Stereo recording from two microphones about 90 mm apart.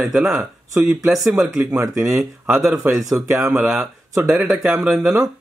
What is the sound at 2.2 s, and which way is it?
Speech, 25° right (ahead or behind).